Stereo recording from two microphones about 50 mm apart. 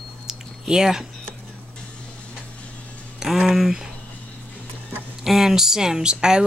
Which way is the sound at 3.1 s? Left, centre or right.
Centre.